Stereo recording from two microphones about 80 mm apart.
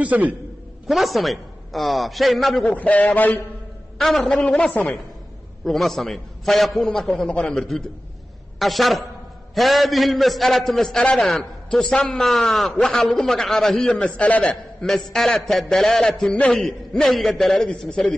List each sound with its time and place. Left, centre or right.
0.0 s a man's voice: centre
0.8 s a man's voice: centre
2.7 s a man's voice: centre
4.0 s a man's voice: centre
7.6 s a man's voice: centre